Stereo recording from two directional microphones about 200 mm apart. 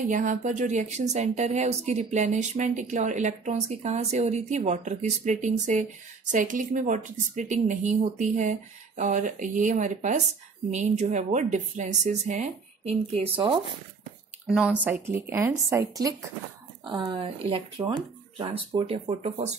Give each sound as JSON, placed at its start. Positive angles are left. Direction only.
{"t": 0.1, "sound": "a woman's voice", "side_deg": -40}
{"t": 14.4, "sound": "speech", "side_deg": -5}